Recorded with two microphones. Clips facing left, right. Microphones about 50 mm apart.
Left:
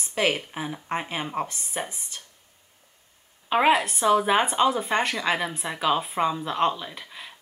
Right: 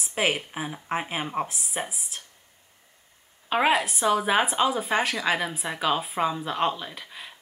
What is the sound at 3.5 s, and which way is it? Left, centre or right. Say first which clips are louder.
A woman's voice: left 2 dB; centre.